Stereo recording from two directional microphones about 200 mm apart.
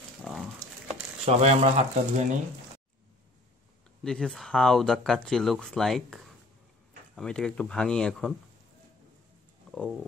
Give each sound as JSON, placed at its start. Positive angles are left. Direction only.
{"t": 0.2, "sound": "a sound", "side_deg": 0}
{"t": 1.2, "sound": "speech", "side_deg": -30}
{"t": 4.0, "sound": "speech", "side_deg": 5}
{"t": 9.7, "sound": "speech", "side_deg": 0}